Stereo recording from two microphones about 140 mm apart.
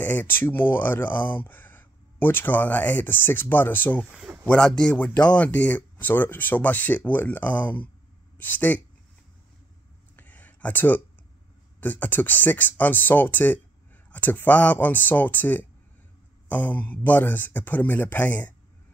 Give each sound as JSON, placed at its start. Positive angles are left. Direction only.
{"t": 0.0, "sound": "speech", "side_deg": 15}
{"t": 4.1, "sound": "speech", "side_deg": -5}
{"t": 4.5, "sound": "speech", "side_deg": 5}
{"t": 10.1, "sound": "a sound", "side_deg": 10}
{"t": 11.8, "sound": "speech", "side_deg": 10}